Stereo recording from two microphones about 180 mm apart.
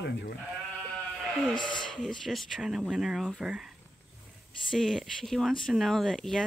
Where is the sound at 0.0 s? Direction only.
75° left (ahead or behind).